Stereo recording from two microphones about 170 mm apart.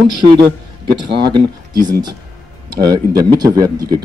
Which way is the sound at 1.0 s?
75° right (ahead or behind).